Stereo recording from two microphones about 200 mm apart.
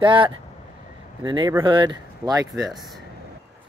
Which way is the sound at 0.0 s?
25° right (ahead or behind).